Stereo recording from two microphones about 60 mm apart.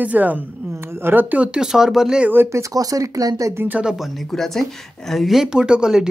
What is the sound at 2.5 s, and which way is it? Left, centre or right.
Speech, right.